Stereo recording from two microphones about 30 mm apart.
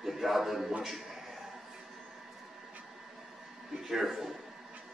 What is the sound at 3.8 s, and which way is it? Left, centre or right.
Speech, centre.